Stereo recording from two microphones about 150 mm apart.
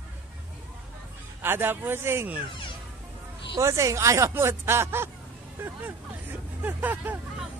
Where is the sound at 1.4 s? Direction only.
15° right (ahead or behind).